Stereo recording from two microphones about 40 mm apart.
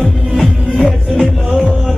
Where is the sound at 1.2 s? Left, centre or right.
Centre.